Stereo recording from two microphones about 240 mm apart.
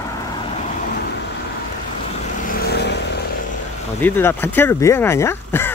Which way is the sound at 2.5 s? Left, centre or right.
Left.